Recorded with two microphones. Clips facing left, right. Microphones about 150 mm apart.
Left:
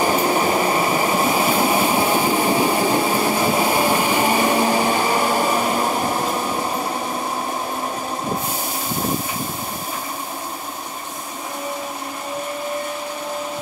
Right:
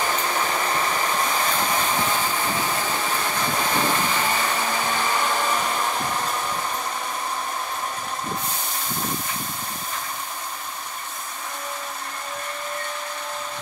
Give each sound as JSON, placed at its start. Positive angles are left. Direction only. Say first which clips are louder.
{"t": 0.0, "sound": "train", "louder": "left 7 dB", "side_deg": 35}
{"t": 0.7, "sound": "train", "louder": "left 6 dB", "side_deg": 10}
{"t": 4.5, "sound": "a sound", "louder": "left 8 dB", "side_deg": 35}